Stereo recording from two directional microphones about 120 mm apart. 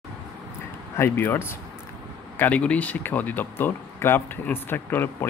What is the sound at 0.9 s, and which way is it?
Speech, 20° left (ahead or behind).